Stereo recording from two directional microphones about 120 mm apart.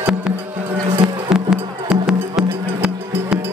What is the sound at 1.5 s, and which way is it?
Music, 5° right (ahead or behind).